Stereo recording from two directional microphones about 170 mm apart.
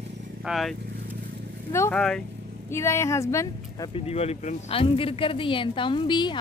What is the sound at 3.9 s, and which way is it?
Speech, 40° left (ahead or behind).